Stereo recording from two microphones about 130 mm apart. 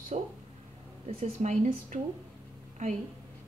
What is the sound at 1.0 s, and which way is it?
Speech, 60° right (ahead or behind).